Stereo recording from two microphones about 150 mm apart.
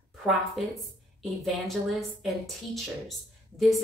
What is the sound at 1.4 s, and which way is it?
Speech, centre (ahead or behind).